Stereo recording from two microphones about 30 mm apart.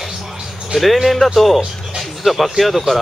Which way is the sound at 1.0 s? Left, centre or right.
Centre.